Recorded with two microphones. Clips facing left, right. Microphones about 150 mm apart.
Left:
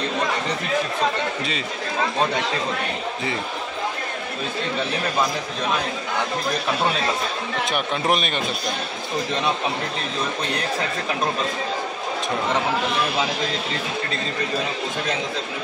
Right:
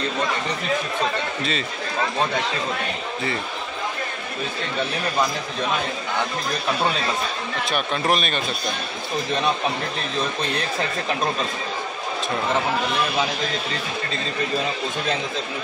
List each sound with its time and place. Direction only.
7.6 s speech: 20° left (ahead or behind)